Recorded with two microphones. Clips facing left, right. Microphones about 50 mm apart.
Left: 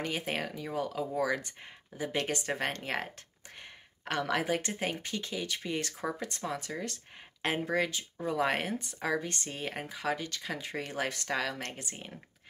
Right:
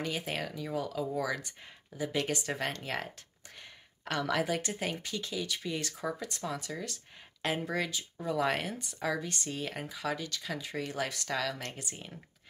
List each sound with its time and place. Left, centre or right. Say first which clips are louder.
0.0 s speech: left 1 dB; left